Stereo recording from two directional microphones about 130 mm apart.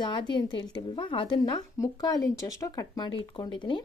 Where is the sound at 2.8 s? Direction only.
35° left (ahead or behind).